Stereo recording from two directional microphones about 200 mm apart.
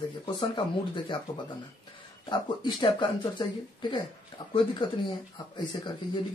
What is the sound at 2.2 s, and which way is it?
Speech, 25° left (ahead or behind).